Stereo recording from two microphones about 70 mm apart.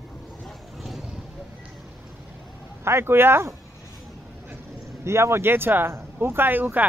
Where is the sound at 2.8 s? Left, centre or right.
Right.